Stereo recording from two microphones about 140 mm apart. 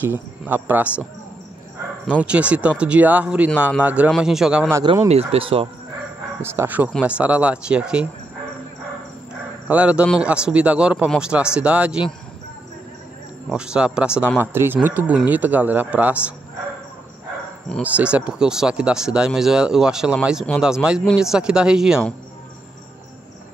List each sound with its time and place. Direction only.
0.0 s speech: 15° right (ahead or behind)
2.0 s speech: 10° right (ahead or behind)
5.0 s speech: 45° right (ahead or behind)
6.4 s speech: 15° right (ahead or behind)
9.7 s speech: 10° right (ahead or behind)
13.5 s speech: 5° right (ahead or behind)
17.9 s speech: 10° right (ahead or behind)